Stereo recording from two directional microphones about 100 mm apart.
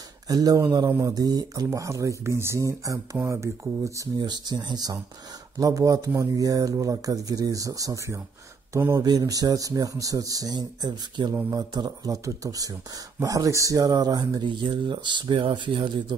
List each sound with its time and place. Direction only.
0.3 s speech: 40° right (ahead or behind)
4.2 s speech: 45° right (ahead or behind); by 9.0 s 30° right (ahead or behind)
9.0 s speech: 40° right (ahead or behind)